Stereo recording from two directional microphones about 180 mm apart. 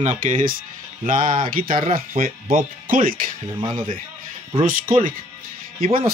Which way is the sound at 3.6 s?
25° right (ahead or behind).